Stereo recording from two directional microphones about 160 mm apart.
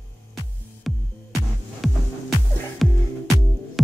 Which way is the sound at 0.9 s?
Centre (ahead or behind).